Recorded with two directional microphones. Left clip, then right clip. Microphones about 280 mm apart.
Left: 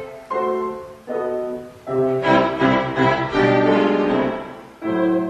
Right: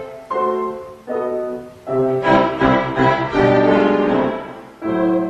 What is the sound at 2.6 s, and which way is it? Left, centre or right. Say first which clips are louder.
Music: right 2 dB; centre.